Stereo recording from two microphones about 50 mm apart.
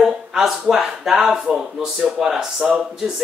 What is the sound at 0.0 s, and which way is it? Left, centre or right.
Speech, centre.